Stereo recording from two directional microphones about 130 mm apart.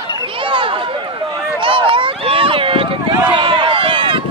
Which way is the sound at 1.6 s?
40° right (ahead or behind).